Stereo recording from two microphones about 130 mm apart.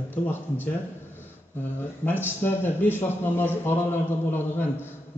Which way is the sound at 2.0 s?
15° left (ahead or behind).